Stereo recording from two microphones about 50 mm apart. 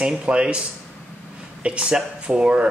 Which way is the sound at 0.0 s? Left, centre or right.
Right.